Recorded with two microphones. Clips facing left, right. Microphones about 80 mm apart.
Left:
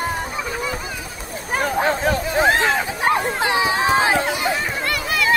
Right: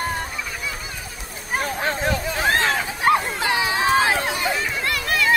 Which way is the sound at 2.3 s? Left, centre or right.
Left.